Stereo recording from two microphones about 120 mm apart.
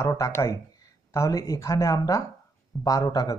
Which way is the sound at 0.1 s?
25° left (ahead or behind).